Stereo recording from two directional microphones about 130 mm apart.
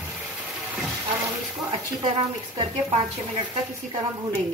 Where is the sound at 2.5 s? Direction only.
30° right (ahead or behind).